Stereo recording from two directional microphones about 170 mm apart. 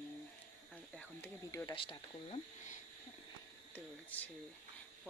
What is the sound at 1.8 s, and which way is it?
Speech, 30° left (ahead or behind).